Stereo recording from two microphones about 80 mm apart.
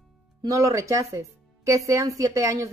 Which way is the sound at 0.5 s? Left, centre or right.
Right.